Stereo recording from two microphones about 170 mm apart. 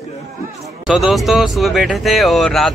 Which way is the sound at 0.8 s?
Centre (ahead or behind).